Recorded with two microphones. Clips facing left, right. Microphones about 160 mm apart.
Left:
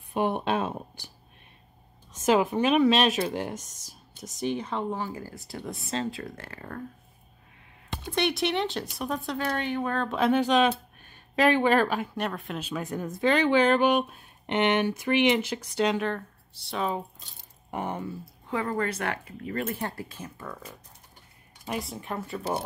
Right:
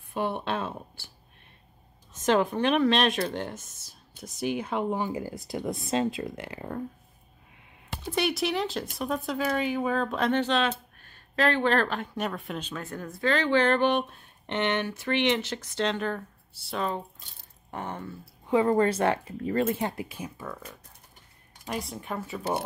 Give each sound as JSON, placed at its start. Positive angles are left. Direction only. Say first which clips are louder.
{"t": 0.1, "sound": "a sound", "louder": "left 3 dB", "side_deg": 15}
{"t": 2.2, "sound": "speech", "louder": "left 1 dB", "side_deg": 5}
{"t": 4.2, "sound": "speech", "louder": "even", "side_deg": -5}
{"t": 8.1, "sound": "speech", "louder": "left 1 dB", "side_deg": 0}
{"t": 16.1, "sound": "speech", "louder": "left 1 dB", "side_deg": -5}
{"t": 18.5, "sound": "speech", "louder": "right 7 dB", "side_deg": -25}
{"t": 21.6, "sound": "speech", "louder": "left 1 dB", "side_deg": 0}